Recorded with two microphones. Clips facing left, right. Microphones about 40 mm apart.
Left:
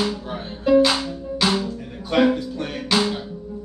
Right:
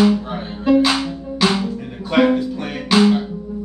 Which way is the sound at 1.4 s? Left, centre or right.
Right.